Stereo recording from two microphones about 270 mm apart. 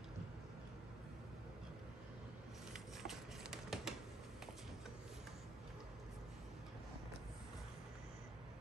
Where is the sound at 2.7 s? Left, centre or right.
Centre.